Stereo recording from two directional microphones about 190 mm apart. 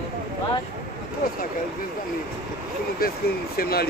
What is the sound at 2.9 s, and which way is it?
Speech, 50° left (ahead or behind).